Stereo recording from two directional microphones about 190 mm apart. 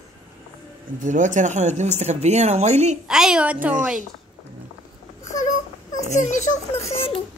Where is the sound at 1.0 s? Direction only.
40° right (ahead or behind).